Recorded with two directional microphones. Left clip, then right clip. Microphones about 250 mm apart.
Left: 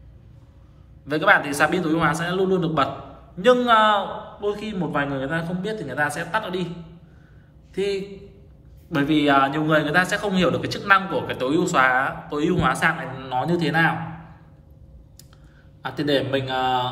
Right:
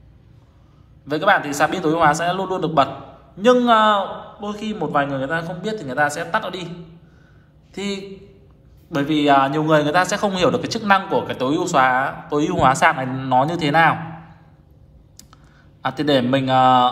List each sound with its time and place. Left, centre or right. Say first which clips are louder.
1.0 s a man's voice: right 1 dB; centre
7.7 s a man's voice: left 3 dB; centre
15.9 s speech: right 4 dB; right